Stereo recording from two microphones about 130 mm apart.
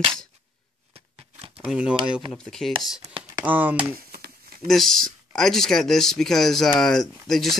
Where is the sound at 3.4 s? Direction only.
15° right (ahead or behind).